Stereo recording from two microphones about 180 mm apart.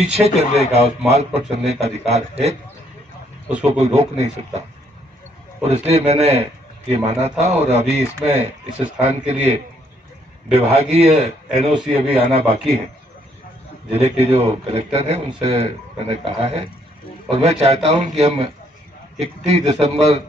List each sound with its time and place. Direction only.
0.1 s a man's voice: 35° right (ahead or behind)
3.4 s a man's voice: 10° right (ahead or behind)
3.7 s a man's voice: 35° right (ahead or behind)
8.9 s speech: 5° right (ahead or behind)
9.3 s a man's voice: 35° right (ahead or behind)
11.4 s a man's voice: 5° right (ahead or behind)
13.9 s a man's voice: 35° right (ahead or behind)
19.1 s a man's voice: 35° right (ahead or behind)